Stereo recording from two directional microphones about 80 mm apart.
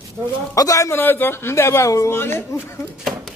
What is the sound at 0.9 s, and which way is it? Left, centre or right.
Speech, left.